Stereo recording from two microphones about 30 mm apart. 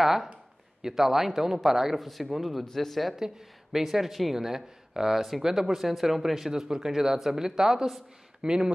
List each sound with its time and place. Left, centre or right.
0.0 s speech: centre
2.0 s speech: centre
2.6 s speech: centre
3.2 s speech: centre
6.5 s speech: right